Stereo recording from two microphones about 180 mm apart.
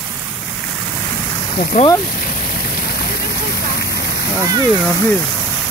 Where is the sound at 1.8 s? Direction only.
45° left (ahead or behind).